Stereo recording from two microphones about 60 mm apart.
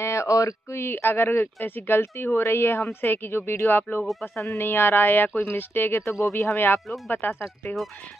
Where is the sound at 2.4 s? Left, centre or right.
Left.